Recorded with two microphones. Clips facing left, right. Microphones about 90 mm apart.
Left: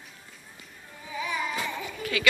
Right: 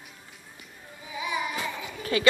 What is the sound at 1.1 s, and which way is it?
Music, 15° right (ahead or behind).